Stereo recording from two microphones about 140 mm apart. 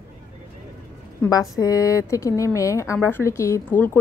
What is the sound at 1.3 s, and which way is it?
A woman's voice, 25° left (ahead or behind).